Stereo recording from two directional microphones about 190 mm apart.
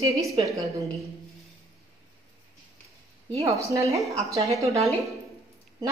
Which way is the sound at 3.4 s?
15° right (ahead or behind).